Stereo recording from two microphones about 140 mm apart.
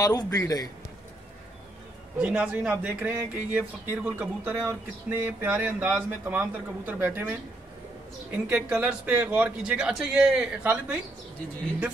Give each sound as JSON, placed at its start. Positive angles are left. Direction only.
{"t": 0.0, "sound": "a man's voice", "side_deg": 25}
{"t": 2.1, "sound": "speech", "side_deg": -10}
{"t": 8.5, "sound": "speech", "side_deg": -10}